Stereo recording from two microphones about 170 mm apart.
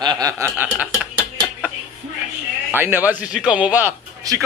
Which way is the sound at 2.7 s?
10° right (ahead or behind).